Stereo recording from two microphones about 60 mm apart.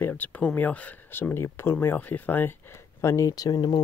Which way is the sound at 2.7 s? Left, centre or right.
Left.